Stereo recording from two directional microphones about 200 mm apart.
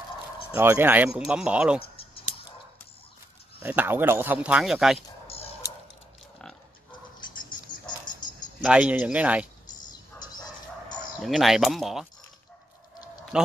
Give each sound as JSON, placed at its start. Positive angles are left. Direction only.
{"t": 0.5, "sound": "speech", "side_deg": -10}
{"t": 3.5, "sound": "speech", "side_deg": -10}
{"t": 5.2, "sound": "a sound", "side_deg": 30}
{"t": 8.2, "sound": "music", "side_deg": 20}
{"t": 8.6, "sound": "speech", "side_deg": -5}
{"t": 9.7, "sound": "dog", "side_deg": 20}
{"t": 11.1, "sound": "speech", "side_deg": 0}
{"t": 13.3, "sound": "speech", "side_deg": -5}